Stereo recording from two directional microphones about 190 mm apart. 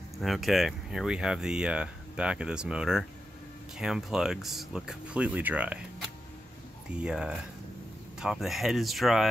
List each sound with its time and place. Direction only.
0.2 s speech: centre (ahead or behind)
6.9 s speech: 5° right (ahead or behind)